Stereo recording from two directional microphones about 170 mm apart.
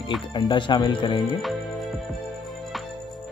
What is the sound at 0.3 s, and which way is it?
Speech, 25° left (ahead or behind).